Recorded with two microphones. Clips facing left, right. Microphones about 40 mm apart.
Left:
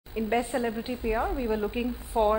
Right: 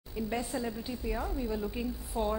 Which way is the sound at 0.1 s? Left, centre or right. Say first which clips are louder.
Left 7 dB; left.